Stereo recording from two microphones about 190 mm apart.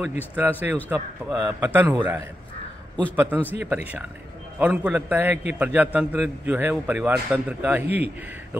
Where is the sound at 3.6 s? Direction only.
5° right (ahead or behind).